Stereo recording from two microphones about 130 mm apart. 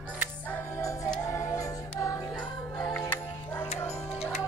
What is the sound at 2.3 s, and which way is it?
Music, 5° left (ahead or behind).